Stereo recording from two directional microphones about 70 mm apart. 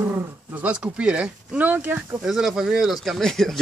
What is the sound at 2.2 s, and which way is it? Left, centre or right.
Speech, centre.